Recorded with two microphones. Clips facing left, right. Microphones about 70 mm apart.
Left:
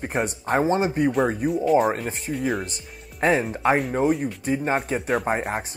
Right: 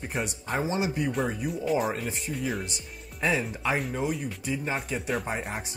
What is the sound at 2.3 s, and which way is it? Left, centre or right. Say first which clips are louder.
Speech: left 7 dB; centre.